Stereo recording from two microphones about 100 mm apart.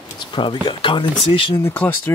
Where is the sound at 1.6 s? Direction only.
20° left (ahead or behind).